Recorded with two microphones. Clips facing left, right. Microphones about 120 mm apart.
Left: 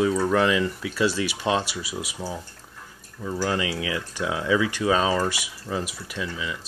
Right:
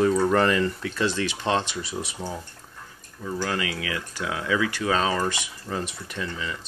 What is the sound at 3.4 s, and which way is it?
Speech, 20° left (ahead or behind).